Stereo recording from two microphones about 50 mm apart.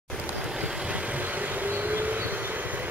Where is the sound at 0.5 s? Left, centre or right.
Centre.